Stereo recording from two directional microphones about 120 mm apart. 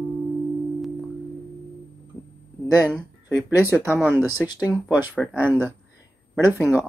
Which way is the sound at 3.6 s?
20° right (ahead or behind).